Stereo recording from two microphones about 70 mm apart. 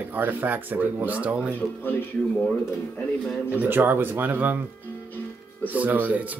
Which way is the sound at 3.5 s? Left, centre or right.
Right.